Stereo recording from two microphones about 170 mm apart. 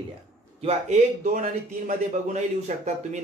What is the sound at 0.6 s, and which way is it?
A man's voice, 50° right (ahead or behind).